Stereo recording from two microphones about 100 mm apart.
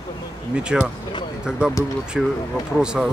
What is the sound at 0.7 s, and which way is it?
Speech, 5° right (ahead or behind).